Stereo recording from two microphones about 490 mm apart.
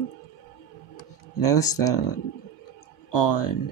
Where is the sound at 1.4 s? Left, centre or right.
Left.